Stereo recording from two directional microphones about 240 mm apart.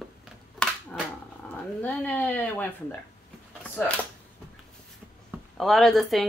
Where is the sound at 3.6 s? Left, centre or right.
Centre.